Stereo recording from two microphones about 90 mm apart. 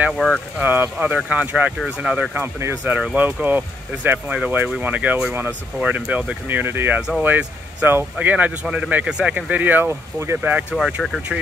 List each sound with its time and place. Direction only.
0.6 s speech: 20° right (ahead or behind)
2.3 s speech: 25° right (ahead or behind)
7.0 s speech: 10° right (ahead or behind)